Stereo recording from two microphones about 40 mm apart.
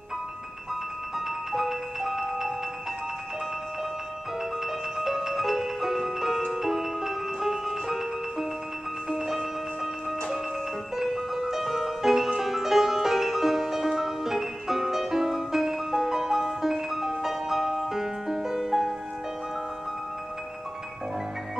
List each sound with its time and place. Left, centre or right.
1.1 s music: centre
4.6 s music: centre
11.0 s music: centre